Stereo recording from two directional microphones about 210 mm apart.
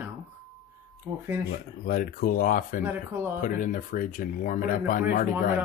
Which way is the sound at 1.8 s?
45° left (ahead or behind).